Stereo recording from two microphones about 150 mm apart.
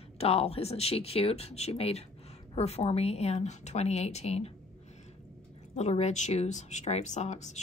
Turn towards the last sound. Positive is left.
turn(degrees=50)  # may be behind; listen again after turning